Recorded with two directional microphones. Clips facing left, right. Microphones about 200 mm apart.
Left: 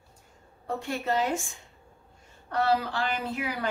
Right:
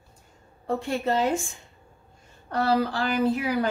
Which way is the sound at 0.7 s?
30° right (ahead or behind).